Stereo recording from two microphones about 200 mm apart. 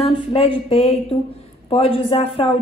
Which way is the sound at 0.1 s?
25° left (ahead or behind).